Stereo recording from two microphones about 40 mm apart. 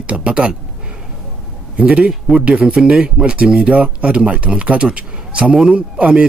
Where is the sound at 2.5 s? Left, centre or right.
Right.